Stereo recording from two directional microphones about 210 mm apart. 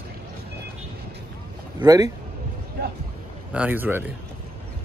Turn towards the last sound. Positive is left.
turn(degrees=-10)  # may be behind; listen again after turning